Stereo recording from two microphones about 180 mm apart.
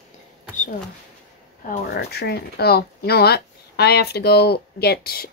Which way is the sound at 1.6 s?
50° left (ahead or behind).